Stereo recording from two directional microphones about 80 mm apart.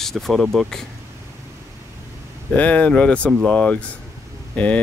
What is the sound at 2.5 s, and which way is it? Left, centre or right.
Speech, centre.